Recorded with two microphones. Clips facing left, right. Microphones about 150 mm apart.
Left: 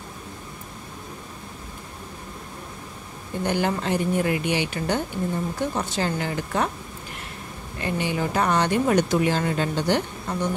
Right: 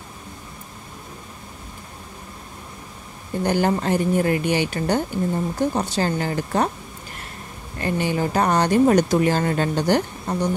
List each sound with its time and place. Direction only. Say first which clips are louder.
3.4 s speech: right 4 dB; 40° right (ahead or behind)
7.8 s speech: right 3 dB; 40° right (ahead or behind)